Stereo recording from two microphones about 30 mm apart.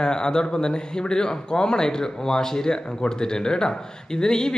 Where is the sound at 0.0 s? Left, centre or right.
Left.